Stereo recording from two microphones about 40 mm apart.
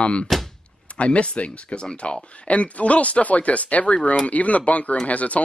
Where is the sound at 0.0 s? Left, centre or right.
Left.